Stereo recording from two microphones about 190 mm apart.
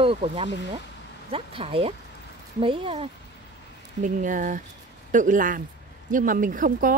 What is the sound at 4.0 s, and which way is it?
Speech, 45° right (ahead or behind).